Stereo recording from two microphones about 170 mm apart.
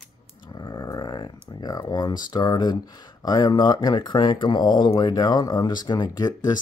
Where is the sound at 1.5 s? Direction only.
25° left (ahead or behind).